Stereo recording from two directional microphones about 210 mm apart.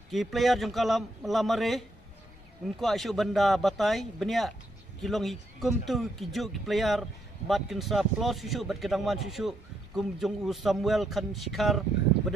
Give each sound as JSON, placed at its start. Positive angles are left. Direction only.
{"t": 0.1, "sound": "speech", "side_deg": 0}